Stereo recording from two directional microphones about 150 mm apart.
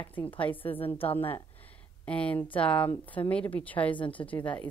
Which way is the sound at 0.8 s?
40° left (ahead or behind).